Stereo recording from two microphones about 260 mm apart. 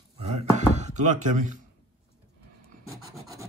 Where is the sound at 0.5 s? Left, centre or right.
Right.